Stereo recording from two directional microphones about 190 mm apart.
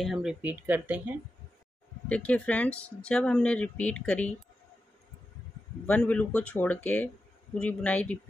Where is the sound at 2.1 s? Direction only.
5° left (ahead or behind).